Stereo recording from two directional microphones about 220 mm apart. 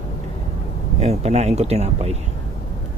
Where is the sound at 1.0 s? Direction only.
30° right (ahead or behind).